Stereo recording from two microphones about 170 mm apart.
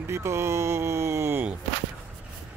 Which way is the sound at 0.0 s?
15° right (ahead or behind).